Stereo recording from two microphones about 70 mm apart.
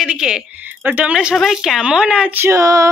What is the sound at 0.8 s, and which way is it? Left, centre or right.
Speech, right.